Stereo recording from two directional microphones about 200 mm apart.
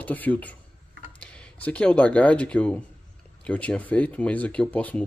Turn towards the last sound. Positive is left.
turn(degrees=5)  # may be behind; listen again after turning